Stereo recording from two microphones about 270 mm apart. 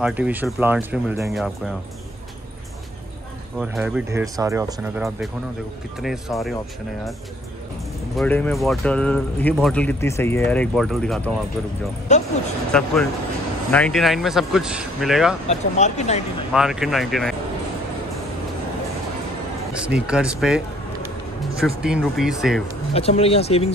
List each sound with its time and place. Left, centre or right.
0.0 s speech: centre
3.5 s speech: centre
5.9 s speech: centre
8.2 s speech: centre
12.1 s speech: left
12.7 s speech: centre
15.4 s speech: left
16.5 s speech: centre
19.9 s speech: centre
22.9 s speech: left